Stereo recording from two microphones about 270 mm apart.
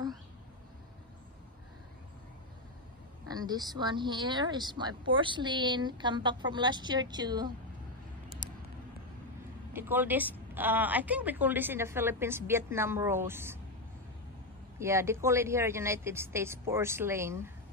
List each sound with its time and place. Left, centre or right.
3.3 s speech: centre
9.7 s speech: centre
14.8 s speech: centre